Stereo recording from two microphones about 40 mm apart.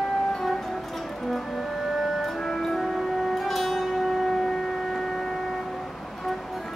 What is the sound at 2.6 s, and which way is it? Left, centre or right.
Music, centre.